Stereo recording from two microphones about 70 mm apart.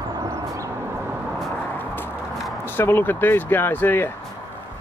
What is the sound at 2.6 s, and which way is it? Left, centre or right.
Speech, left.